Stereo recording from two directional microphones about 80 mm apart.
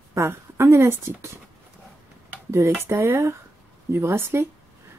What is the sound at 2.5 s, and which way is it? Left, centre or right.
Speech, right.